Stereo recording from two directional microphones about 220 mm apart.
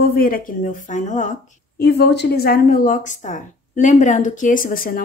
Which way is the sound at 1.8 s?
45° left (ahead or behind).